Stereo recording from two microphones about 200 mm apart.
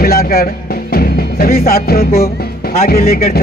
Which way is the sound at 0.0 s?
50° left (ahead or behind).